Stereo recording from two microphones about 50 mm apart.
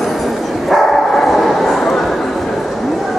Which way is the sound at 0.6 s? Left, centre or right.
Centre.